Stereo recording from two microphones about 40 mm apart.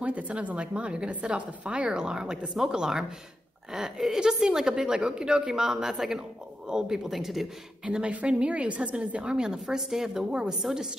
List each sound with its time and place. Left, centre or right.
0.0 s a woman's voice: right
1.9 s a woman's voice: centre
7.1 s speech: centre
7.8 s a woman's voice: right; by 10.9 s centre